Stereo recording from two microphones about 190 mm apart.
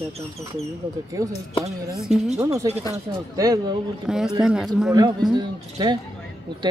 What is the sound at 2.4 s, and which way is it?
A woman's voice, 15° right (ahead or behind).